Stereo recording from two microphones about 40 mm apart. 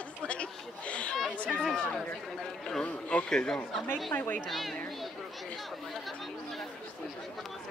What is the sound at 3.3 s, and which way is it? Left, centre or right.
Speech, centre.